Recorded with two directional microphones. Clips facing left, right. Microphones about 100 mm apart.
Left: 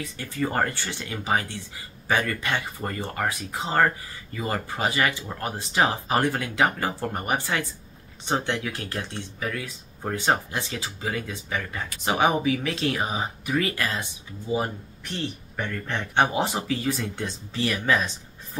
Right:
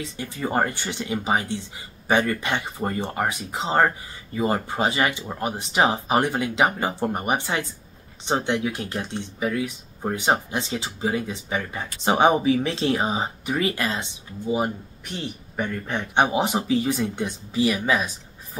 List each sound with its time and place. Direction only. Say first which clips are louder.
0.0 s speech: even; 20° right (ahead or behind)